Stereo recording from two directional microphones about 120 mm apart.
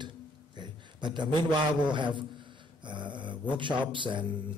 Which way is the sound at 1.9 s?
40° right (ahead or behind).